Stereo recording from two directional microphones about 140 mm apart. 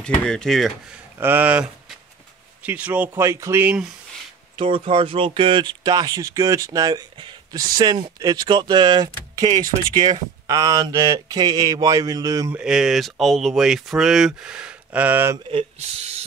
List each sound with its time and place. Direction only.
0.0 s speech: 5° left (ahead or behind)
1.1 s speech: 15° right (ahead or behind)
4.6 s speech: 40° right (ahead or behind)
12.5 s speech: 5° right (ahead or behind)
15.5 s speech: 50° right (ahead or behind)